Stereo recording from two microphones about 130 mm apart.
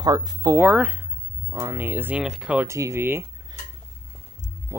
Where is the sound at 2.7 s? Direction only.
20° right (ahead or behind).